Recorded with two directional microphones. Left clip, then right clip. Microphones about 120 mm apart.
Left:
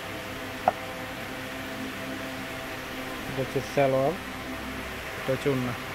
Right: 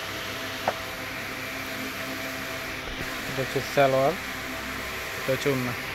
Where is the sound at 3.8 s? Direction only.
15° right (ahead or behind).